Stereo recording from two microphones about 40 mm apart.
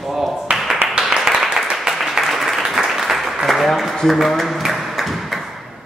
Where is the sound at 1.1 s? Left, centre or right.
Centre.